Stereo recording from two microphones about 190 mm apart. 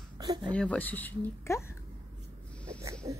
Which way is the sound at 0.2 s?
20° right (ahead or behind).